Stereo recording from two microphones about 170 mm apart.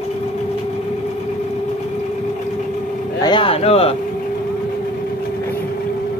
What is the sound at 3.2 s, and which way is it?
Speech, 30° left (ahead or behind).